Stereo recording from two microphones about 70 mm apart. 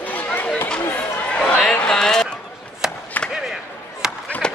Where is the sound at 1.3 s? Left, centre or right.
Centre.